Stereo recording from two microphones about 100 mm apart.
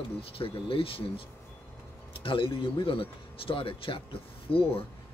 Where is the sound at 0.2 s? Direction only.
65° left (ahead or behind).